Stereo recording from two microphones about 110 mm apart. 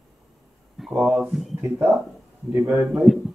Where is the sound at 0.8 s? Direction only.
Centre (ahead or behind).